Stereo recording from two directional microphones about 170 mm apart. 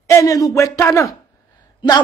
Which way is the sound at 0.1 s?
20° left (ahead or behind).